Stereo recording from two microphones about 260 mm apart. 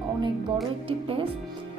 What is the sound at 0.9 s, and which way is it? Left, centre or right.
Speech, right.